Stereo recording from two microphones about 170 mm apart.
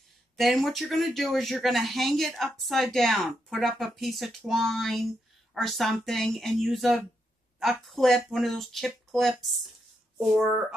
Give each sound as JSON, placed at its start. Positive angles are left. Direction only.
{"t": 0.4, "sound": "speech", "side_deg": 0}